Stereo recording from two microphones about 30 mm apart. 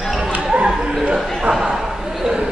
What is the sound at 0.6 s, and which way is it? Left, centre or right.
Dog, right.